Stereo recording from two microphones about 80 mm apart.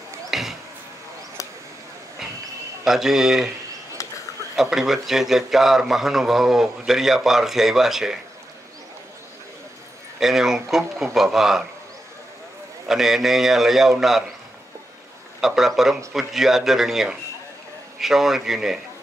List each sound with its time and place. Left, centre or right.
0.3 s a sound: centre
2.8 s speech: centre
4.0 s a sound: left
4.6 s speech: centre
10.2 s speech: centre
12.8 s speech: centre
15.4 s speech: centre